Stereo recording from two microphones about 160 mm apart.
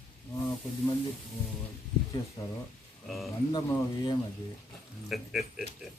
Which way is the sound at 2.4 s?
25° left (ahead or behind).